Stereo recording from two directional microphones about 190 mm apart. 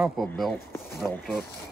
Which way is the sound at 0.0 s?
Centre (ahead or behind).